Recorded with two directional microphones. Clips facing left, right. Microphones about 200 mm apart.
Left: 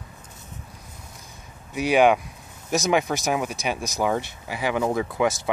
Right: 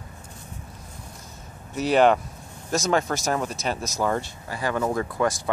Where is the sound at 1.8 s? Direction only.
10° left (ahead or behind).